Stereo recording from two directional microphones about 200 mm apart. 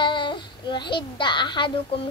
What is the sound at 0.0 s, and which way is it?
A child's voice, 25° left (ahead or behind).